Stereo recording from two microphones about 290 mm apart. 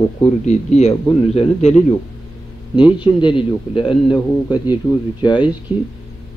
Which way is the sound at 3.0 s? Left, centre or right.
Centre.